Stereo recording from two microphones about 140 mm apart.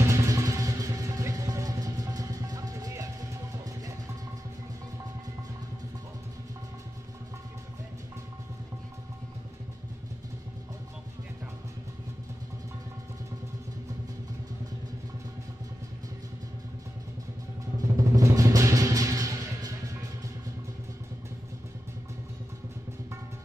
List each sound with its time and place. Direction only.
0.0 s music: 20° right (ahead or behind)
17.7 s music: 25° right (ahead or behind)